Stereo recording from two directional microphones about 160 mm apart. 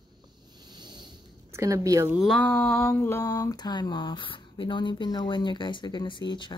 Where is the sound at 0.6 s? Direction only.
25° right (ahead or behind).